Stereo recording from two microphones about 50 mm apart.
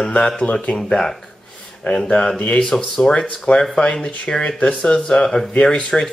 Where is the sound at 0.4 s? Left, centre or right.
Left.